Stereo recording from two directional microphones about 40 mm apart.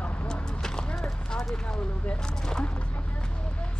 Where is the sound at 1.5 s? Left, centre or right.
Left.